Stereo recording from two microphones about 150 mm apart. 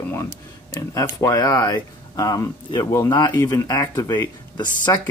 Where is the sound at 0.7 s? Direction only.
20° left (ahead or behind).